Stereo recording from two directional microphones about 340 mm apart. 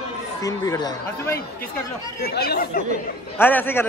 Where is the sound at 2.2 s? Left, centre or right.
Left.